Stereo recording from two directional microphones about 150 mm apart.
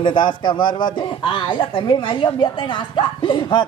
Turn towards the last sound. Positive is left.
turn(degrees=30)  # may be behind; listen again after turning